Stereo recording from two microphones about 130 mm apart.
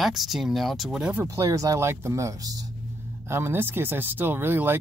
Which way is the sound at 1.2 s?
25° right (ahead or behind).